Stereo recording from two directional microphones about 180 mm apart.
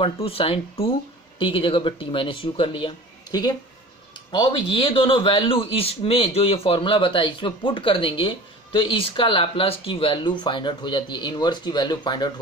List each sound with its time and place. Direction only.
0.0 s a man's voice: 30° left (ahead or behind)